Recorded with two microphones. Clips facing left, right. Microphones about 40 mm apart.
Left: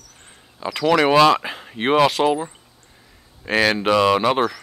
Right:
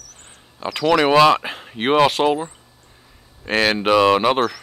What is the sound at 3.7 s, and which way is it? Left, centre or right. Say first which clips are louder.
Speech: right 4 dB; centre.